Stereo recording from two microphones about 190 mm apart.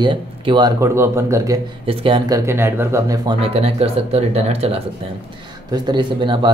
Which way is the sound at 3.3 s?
30° right (ahead or behind).